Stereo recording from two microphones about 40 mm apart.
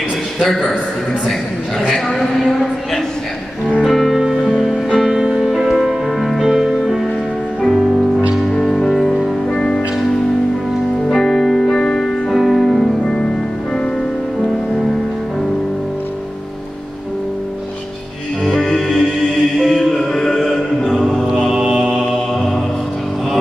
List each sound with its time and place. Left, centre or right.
2.4 s a man's voice: centre
4.5 s music: centre
5.1 s music: centre
5.4 s music: centre
8.6 s music: centre
9.5 s music: left
11.1 s music: centre
12.3 s music: centre
13.0 s music: left
18.4 s music: centre
21.5 s mantra: centre